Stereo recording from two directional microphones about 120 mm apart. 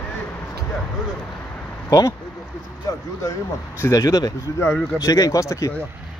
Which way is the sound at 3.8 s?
25° left (ahead or behind).